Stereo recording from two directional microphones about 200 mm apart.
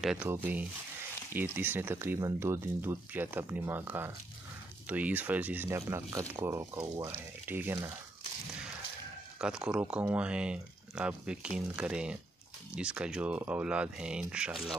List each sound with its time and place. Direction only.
0.0 s speech: 5° right (ahead or behind)
9.4 s speech: 5° right (ahead or behind)